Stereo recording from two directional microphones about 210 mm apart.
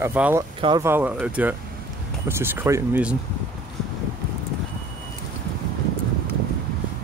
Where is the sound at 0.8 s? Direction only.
10° right (ahead or behind).